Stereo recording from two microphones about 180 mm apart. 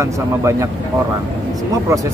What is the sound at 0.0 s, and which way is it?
Speech, 15° right (ahead or behind).